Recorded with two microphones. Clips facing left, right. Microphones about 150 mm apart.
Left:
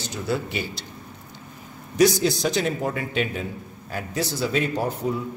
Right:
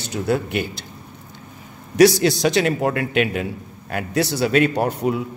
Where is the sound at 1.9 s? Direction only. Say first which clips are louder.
Right 5 dB; 75° right (ahead or behind).